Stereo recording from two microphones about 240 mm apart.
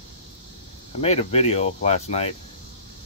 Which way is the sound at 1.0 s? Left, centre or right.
Left.